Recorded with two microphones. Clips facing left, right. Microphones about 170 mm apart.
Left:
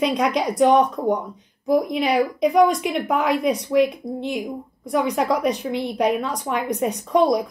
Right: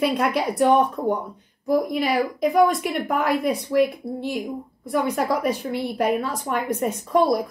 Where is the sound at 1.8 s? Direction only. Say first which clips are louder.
Left 2 dB; centre (ahead or behind).